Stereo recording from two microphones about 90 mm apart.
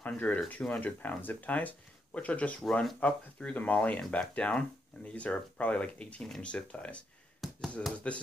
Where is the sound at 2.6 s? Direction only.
5° left (ahead or behind).